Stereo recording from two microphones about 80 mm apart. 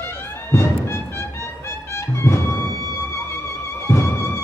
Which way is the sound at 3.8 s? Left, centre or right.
Left.